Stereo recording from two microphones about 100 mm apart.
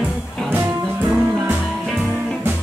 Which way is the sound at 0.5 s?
20° right (ahead or behind).